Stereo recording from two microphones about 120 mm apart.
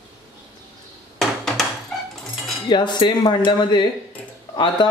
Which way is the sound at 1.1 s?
5° left (ahead or behind).